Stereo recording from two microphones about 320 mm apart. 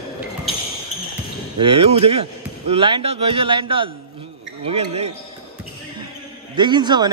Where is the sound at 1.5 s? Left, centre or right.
Centre.